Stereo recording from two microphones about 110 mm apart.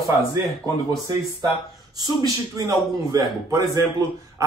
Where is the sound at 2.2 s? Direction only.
30° right (ahead or behind).